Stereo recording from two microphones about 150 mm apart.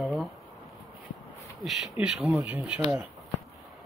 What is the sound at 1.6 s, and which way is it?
Speech, centre (ahead or behind).